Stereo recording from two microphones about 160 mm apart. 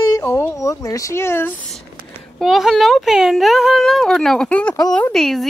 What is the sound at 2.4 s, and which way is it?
Speech, centre (ahead or behind).